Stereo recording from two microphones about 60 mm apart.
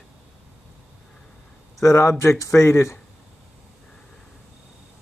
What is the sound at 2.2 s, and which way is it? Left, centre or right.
Speech, left.